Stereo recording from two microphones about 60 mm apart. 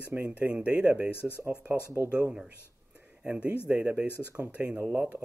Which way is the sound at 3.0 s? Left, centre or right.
Right.